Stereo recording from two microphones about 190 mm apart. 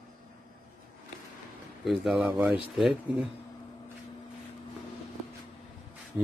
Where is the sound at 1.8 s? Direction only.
Centre (ahead or behind).